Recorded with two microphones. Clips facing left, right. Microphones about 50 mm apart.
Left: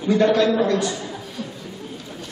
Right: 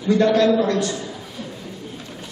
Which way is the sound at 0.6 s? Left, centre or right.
Centre.